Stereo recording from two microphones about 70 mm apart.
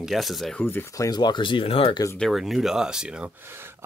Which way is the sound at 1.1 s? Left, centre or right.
Left.